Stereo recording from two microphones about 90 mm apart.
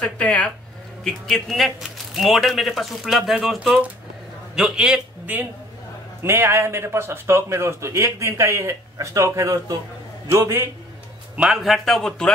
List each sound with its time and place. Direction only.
0.0 s speech: 15° left (ahead or behind)
1.0 s a man's voice: 5° left (ahead or behind); by 10.7 s 30° right (ahead or behind)
11.3 s speech: 5° right (ahead or behind)